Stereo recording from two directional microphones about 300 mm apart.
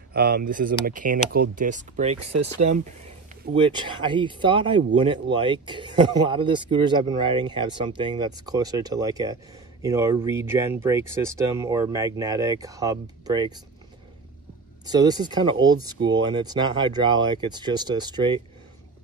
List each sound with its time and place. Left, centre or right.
0.1 s speech: right; by 13.5 s centre
14.9 s speech: centre